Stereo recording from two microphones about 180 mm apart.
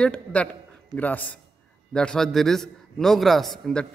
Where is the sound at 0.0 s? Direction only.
5° left (ahead or behind).